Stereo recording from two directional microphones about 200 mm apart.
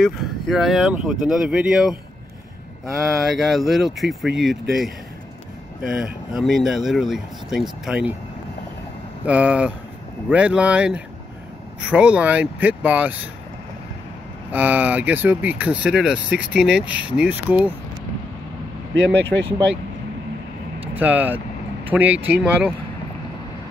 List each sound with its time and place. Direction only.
0.0 s speech: centre (ahead or behind)
9.2 s speech: 5° right (ahead or behind)
14.5 s speech: 10° right (ahead or behind)
18.9 s speech: 65° right (ahead or behind)
20.9 s speech: 10° right (ahead or behind)